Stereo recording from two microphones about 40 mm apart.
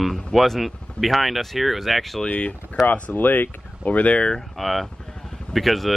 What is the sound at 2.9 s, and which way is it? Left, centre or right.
Speech, left.